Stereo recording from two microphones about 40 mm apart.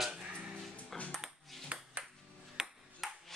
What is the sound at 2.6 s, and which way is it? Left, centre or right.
Ping, centre.